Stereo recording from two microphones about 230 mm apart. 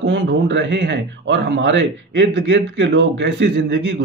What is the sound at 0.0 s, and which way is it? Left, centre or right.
A man's voice, right.